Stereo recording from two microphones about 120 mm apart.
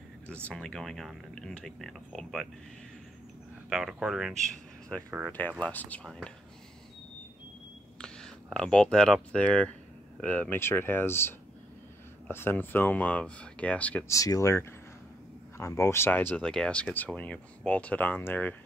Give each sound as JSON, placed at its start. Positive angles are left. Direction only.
{"t": 0.3, "sound": "speech", "side_deg": 10}
{"t": 3.7, "sound": "speech", "side_deg": 0}
{"t": 6.0, "sound": "speech", "side_deg": 0}
{"t": 8.0, "sound": "speech", "side_deg": 5}
{"t": 14.0, "sound": "speech", "side_deg": 25}